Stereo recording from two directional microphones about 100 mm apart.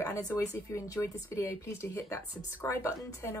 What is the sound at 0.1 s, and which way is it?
Speech, 35° left (ahead or behind).